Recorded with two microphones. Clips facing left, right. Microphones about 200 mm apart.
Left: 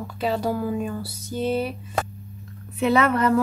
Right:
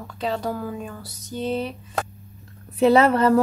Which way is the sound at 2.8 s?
30° right (ahead or behind).